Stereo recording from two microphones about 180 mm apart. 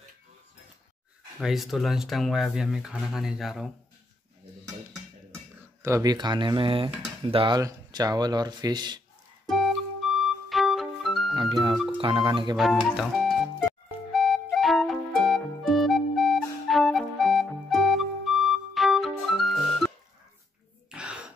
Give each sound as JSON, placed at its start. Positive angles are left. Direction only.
{"t": 1.4, "sound": "speech", "side_deg": 0}
{"t": 5.3, "sound": "speech", "side_deg": -15}
{"t": 9.5, "sound": "music", "side_deg": 0}
{"t": 11.3, "sound": "music", "side_deg": -25}
{"t": 12.0, "sound": "speech", "side_deg": -30}
{"t": 12.5, "sound": "speech", "side_deg": 0}
{"t": 14.1, "sound": "music", "side_deg": 0}
{"t": 20.9, "sound": "throat clearing", "side_deg": -5}